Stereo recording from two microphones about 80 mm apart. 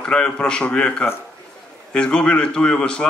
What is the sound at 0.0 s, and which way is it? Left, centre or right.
A man's voice, centre.